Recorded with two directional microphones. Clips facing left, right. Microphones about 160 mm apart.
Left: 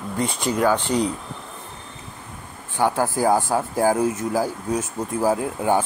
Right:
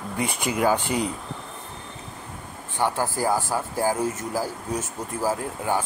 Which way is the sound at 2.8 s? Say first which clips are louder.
Left 4 dB; 15° left (ahead or behind).